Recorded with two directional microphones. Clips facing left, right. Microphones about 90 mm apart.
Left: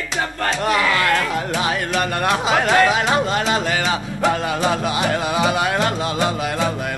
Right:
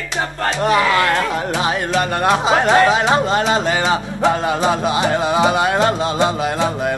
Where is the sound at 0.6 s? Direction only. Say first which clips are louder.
Right 4 dB; 25° right (ahead or behind).